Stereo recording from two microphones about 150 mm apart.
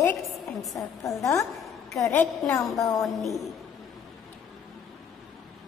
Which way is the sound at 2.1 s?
5° left (ahead or behind).